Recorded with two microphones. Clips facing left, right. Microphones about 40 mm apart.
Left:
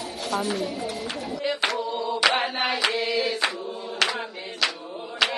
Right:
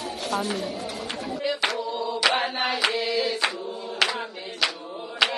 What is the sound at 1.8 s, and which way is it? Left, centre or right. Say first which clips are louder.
Mantra: left 1 dB; centre.